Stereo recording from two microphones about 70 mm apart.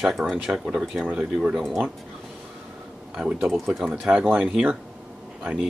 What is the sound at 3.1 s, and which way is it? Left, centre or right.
Speech, centre.